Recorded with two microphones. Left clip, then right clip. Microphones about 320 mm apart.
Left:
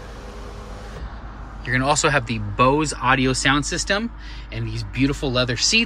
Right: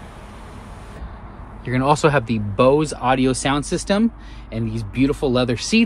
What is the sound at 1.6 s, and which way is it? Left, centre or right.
Speech, centre.